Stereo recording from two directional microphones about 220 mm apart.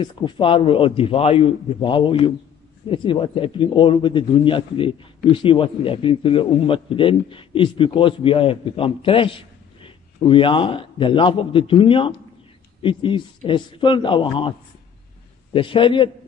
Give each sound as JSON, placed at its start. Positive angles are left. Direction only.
{"t": 0.0, "sound": "a man's voice", "side_deg": 20}
{"t": 15.5, "sound": "a man's voice", "side_deg": 20}